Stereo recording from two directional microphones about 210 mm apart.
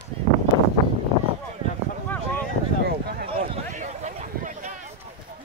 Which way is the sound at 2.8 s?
50° right (ahead or behind).